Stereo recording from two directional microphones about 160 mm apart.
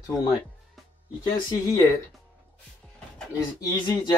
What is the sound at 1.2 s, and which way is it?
Speech, 20° left (ahead or behind).